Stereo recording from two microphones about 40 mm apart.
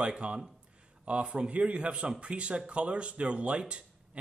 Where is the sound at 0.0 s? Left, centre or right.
Right.